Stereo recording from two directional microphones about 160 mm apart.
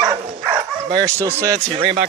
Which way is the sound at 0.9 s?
20° right (ahead or behind).